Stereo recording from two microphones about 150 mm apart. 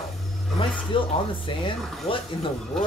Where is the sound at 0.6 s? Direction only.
35° left (ahead or behind).